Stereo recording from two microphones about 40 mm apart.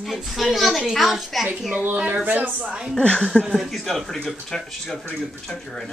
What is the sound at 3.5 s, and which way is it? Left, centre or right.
Speech, centre.